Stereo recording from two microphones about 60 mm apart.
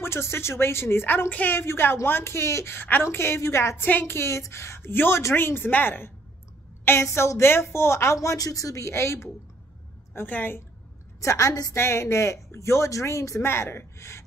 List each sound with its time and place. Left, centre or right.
0.0 s speech: left
1.6 s speech: left
2.7 s speech: left
3.8 s a woman's voice: left
7.0 s speech: left
10.1 s a woman's voice: left
11.1 s a woman's voice: left
11.7 s speech: left